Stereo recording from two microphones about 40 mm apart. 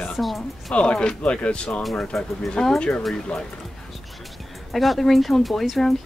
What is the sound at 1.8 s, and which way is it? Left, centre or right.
Speech, centre.